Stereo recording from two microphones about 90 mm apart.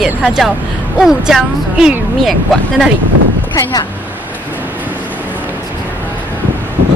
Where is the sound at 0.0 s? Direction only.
Centre (ahead or behind).